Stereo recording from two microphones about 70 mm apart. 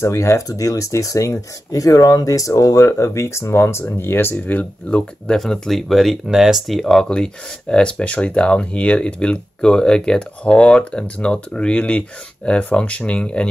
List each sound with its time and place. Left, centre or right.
0.0 s speech: left
5.3 s speech: centre